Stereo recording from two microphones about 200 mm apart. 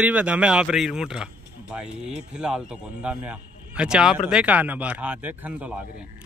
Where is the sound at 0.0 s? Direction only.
5° right (ahead or behind).